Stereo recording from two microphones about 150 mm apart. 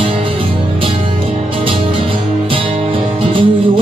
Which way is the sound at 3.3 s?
35° right (ahead or behind).